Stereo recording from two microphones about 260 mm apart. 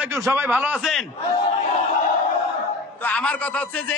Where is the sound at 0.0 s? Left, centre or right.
Centre.